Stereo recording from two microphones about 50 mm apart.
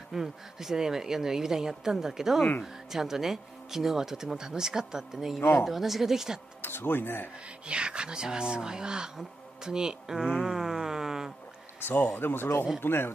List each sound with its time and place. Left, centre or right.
0.1 s speech: centre
5.4 s speech: left
5.7 s speech: centre
6.6 s speech: left
7.6 s speech: right
10.4 s a sound: centre
11.8 s speech: left